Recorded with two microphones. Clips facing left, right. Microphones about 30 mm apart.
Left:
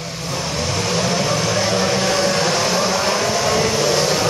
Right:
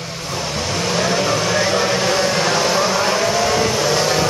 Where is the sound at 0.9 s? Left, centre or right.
Centre.